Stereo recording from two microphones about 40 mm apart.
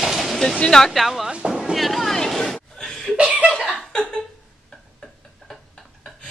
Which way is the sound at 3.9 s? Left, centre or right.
Centre.